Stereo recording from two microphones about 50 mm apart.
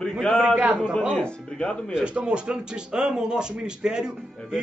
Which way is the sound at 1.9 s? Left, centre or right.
Centre.